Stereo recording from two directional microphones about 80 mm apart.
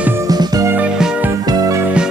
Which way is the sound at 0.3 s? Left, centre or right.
Right.